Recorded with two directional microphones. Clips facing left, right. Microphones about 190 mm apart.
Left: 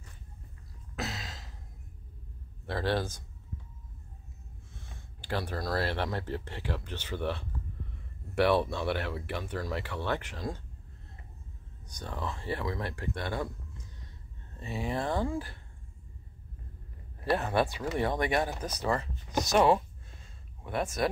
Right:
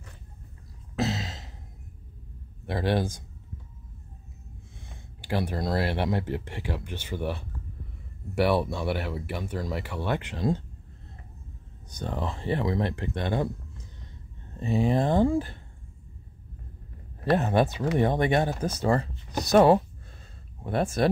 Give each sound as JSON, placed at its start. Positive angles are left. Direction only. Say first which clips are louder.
{"t": 0.9, "sound": "a sound", "louder": "right 9 dB", "side_deg": -25}
{"t": 2.6, "sound": "speech", "louder": "right 4 dB", "side_deg": -15}
{"t": 4.7, "sound": "a sound", "louder": "even", "side_deg": -15}
{"t": 5.4, "sound": "speech", "louder": "right 4 dB", "side_deg": -20}
{"t": 11.9, "sound": "speech", "louder": "right 6 dB", "side_deg": -25}
{"t": 14.6, "sound": "speech", "louder": "right 9 dB", "side_deg": -25}
{"t": 17.4, "sound": "speech", "louder": "right 5 dB", "side_deg": -20}
{"t": 19.5, "sound": "speech", "louder": "right 6 dB", "side_deg": -40}